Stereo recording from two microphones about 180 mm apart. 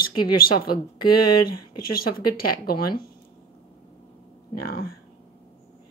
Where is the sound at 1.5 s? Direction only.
55° left (ahead or behind).